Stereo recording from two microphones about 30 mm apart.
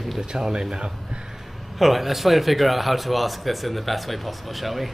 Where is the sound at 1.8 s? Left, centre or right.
Centre.